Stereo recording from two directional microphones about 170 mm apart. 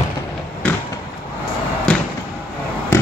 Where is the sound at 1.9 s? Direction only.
5° left (ahead or behind).